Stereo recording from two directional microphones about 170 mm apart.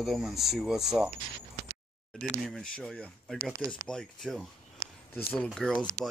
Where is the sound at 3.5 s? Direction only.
20° right (ahead or behind).